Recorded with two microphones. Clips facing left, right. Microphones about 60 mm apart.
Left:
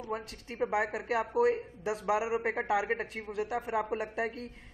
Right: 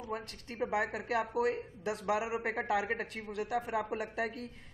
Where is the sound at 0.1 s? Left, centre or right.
Centre.